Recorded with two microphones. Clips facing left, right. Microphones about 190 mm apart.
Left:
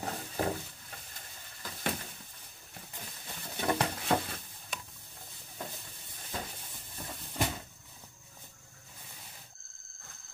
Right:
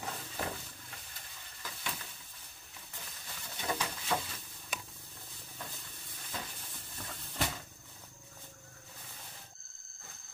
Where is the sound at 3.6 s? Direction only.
55° left (ahead or behind).